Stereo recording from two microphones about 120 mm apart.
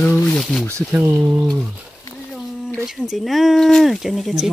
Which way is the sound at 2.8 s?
Centre (ahead or behind).